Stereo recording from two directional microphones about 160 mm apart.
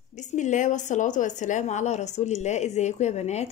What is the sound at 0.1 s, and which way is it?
A woman's voice, 50° left (ahead or behind).